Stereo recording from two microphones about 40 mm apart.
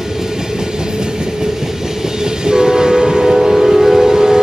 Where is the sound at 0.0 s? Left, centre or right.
Centre.